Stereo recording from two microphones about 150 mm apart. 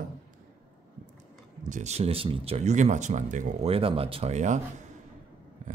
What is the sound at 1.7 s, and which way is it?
Speech, 50° right (ahead or behind).